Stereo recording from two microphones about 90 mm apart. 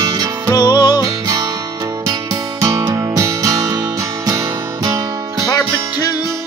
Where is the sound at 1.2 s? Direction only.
40° right (ahead or behind).